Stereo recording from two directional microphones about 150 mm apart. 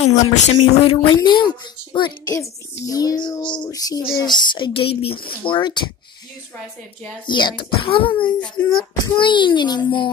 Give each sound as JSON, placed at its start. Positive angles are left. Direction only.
{"t": 0.1, "sound": "speech", "side_deg": 45}
{"t": 1.0, "sound": "a child's voice", "side_deg": 30}
{"t": 5.1, "sound": "speech", "side_deg": 85}
{"t": 5.4, "sound": "a child's voice", "side_deg": 30}
{"t": 7.2, "sound": "a child's voice", "side_deg": 30}